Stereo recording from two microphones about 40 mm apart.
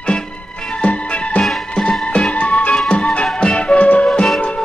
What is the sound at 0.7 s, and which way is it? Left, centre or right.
Music, left.